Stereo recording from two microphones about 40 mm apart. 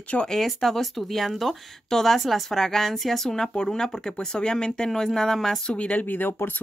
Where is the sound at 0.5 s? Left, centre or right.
Centre.